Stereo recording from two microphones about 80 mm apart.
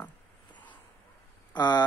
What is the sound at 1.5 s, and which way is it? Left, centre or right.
Speech, left.